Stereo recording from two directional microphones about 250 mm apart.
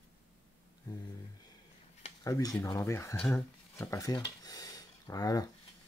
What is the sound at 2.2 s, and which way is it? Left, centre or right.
Speech, centre.